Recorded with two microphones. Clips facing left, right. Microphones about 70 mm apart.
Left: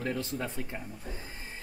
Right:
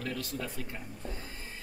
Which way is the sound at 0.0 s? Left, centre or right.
Left.